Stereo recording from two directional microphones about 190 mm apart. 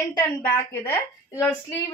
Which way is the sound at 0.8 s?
10° left (ahead or behind).